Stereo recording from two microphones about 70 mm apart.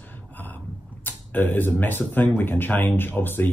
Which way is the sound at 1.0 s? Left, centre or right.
Left.